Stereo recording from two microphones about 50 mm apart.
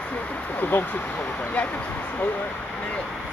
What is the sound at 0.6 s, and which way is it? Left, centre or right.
Speech, left.